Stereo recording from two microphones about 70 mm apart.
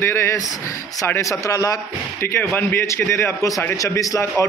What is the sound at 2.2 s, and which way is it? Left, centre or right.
A man's voice, left.